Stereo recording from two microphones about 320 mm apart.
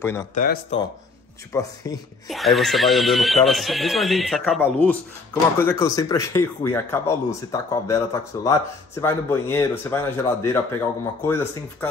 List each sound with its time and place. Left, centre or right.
0.0 s speech: centre
0.3 s speech: left
1.5 s speech: centre
2.2 s speech: centre